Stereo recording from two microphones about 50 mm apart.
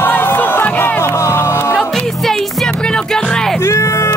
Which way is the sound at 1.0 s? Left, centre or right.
Left.